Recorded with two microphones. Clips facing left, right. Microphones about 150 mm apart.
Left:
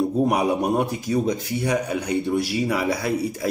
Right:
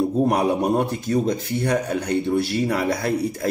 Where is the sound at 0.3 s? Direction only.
10° left (ahead or behind).